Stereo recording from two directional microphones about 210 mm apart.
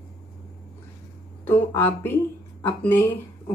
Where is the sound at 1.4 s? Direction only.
10° left (ahead or behind).